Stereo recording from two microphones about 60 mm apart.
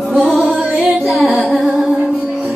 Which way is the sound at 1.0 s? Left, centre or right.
Centre.